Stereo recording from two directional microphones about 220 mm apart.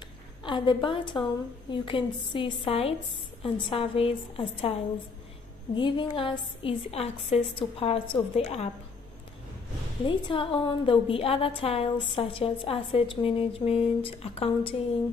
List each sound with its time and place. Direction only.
0.4 s a woman's voice: 20° left (ahead or behind)
5.8 s a woman's voice: 20° left (ahead or behind)
10.0 s a woman's voice: 25° left (ahead or behind)